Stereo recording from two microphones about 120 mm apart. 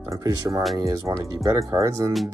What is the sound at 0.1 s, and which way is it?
Speech, 30° right (ahead or behind).